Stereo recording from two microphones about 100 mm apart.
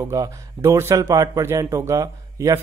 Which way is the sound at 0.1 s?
30° right (ahead or behind).